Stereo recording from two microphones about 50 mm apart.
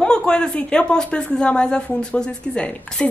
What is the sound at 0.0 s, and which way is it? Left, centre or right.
Speech, centre.